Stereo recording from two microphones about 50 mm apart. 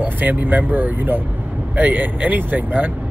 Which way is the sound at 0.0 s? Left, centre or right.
Right.